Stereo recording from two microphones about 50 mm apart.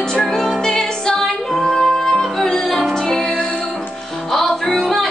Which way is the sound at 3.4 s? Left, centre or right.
Left.